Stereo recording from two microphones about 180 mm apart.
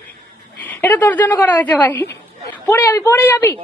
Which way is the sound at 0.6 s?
10° left (ahead or behind).